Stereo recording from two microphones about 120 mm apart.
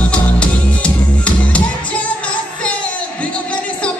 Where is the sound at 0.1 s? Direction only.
10° left (ahead or behind).